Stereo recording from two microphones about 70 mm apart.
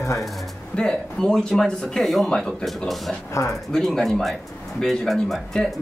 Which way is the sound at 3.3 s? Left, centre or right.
Left.